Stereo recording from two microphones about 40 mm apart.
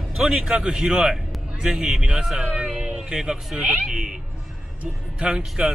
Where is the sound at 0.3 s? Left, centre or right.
Centre.